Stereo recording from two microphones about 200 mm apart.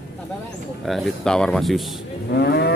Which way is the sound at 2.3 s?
50° left (ahead or behind).